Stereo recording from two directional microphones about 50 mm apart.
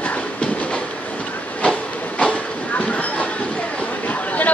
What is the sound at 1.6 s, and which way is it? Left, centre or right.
Train, left.